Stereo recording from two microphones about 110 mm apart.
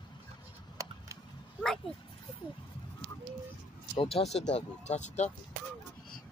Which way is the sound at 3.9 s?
60° left (ahead or behind).